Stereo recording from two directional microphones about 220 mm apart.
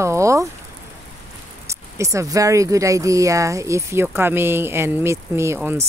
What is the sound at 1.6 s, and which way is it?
Speech, 15° right (ahead or behind).